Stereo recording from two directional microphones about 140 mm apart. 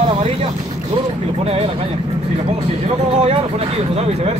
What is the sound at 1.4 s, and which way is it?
Speech, 45° right (ahead or behind).